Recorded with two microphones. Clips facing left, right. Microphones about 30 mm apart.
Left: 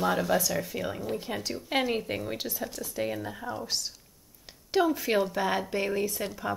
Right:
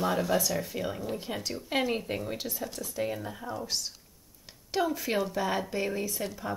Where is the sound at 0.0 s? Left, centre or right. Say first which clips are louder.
Left 1 dB; centre.